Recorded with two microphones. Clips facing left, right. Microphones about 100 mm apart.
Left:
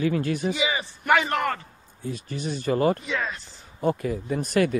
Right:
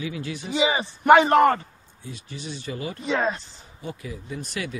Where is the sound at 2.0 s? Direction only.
45° left (ahead or behind).